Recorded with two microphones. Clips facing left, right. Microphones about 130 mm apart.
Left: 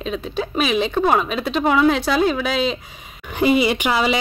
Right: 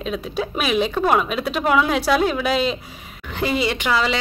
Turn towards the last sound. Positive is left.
turn(degrees=15)  # may be behind; listen again after turning